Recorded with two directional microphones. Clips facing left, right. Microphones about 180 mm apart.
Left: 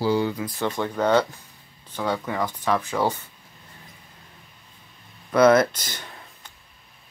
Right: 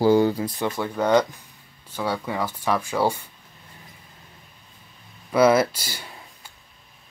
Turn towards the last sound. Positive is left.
turn(degrees=-10)  # may be behind; listen again after turning